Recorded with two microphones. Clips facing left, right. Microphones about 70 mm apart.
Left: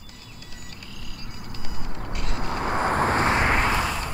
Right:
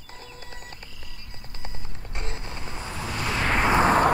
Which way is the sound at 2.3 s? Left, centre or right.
Left.